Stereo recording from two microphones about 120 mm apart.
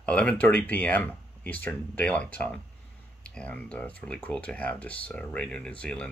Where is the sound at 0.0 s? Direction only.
10° left (ahead or behind).